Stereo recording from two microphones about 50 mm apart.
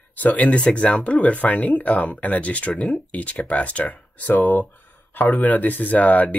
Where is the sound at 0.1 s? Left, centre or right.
Left.